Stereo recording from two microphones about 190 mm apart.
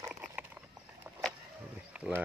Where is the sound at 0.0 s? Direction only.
10° right (ahead or behind).